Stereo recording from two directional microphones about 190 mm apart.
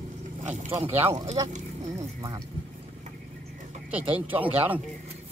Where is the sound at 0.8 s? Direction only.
30° right (ahead or behind).